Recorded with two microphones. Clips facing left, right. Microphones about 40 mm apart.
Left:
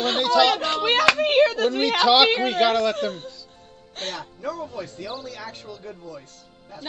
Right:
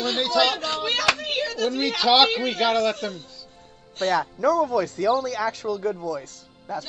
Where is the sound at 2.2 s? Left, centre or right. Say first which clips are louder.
Left 3 dB; left.